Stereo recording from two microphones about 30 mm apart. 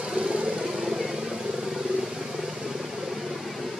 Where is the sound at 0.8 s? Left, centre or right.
Centre.